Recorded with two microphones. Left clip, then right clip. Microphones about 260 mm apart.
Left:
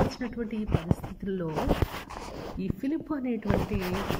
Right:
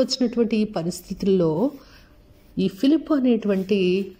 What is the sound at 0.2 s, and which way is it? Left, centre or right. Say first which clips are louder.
Speech: right 12 dB; right.